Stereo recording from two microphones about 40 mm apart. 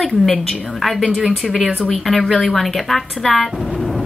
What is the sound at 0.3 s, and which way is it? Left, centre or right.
Speech, centre.